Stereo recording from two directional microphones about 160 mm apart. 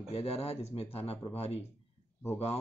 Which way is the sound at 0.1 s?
40° left (ahead or behind).